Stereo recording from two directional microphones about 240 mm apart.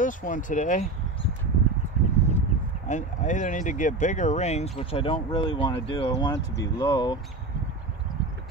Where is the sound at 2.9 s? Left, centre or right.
Left.